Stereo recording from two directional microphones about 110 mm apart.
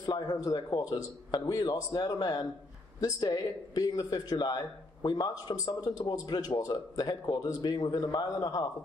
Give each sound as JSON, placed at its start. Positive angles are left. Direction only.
{"t": 0.0, "sound": "a man's voice", "side_deg": 35}